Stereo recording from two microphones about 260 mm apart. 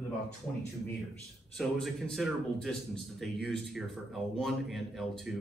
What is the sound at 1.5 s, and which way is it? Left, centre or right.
A man's voice, centre.